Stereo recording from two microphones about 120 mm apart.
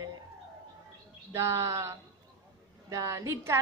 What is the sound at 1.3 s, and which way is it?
A woman's voice, 25° right (ahead or behind).